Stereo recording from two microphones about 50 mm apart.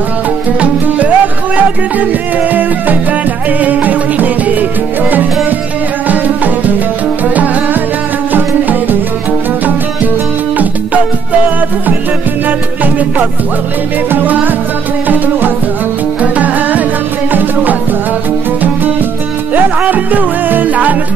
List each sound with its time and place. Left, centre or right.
0.6 s music: right
2.5 s music: right
6.0 s music: right
8.3 s music: right
12.4 s music: right
16.2 s music: right
19.5 s music: right